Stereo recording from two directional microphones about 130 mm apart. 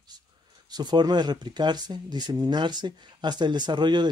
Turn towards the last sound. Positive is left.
turn(degrees=-35)  # may be behind; listen again after turning